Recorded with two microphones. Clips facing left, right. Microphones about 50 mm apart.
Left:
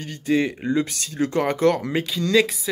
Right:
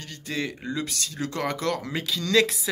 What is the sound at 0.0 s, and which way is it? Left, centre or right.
Speech, left.